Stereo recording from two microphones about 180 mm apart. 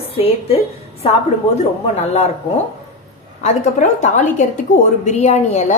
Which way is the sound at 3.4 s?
40° left (ahead or behind).